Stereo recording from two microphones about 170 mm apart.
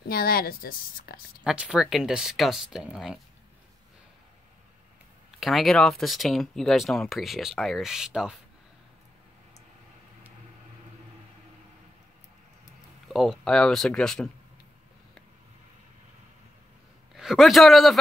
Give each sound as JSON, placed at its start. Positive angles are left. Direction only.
{"t": 0.1, "sound": "a woman's voice", "side_deg": 60}
{"t": 1.4, "sound": "speech", "side_deg": -5}
{"t": 5.4, "sound": "speech", "side_deg": 0}
{"t": 13.1, "sound": "speech", "side_deg": 0}
{"t": 17.1, "sound": "a man's voice", "side_deg": 0}